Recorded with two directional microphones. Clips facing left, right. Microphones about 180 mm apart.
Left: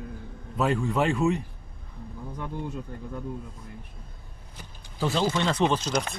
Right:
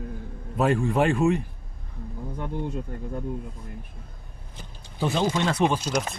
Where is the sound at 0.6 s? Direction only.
55° right (ahead or behind).